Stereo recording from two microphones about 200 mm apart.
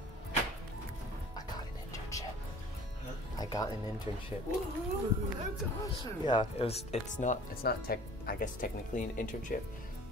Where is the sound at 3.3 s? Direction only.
20° left (ahead or behind).